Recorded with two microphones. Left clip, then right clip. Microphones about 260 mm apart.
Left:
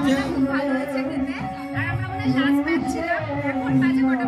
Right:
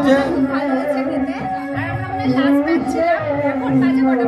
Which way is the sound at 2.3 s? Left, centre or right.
Centre.